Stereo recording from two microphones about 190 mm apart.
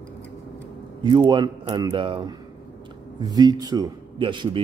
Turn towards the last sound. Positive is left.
turn(degrees=-25)  # may be behind; listen again after turning